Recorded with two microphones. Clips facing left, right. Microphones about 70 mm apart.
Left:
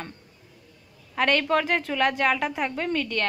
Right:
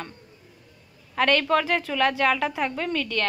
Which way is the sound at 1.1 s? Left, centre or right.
Left.